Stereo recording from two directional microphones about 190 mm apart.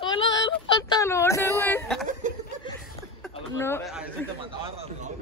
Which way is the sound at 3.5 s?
10° left (ahead or behind).